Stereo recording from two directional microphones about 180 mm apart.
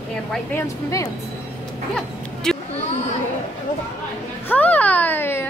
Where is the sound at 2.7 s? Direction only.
40° left (ahead or behind).